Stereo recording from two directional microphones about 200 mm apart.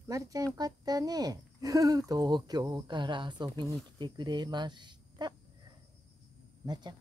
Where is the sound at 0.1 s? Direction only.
15° right (ahead or behind).